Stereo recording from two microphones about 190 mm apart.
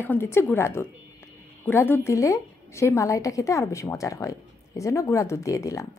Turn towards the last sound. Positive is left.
turn(degrees=15)  # may be behind; listen again after turning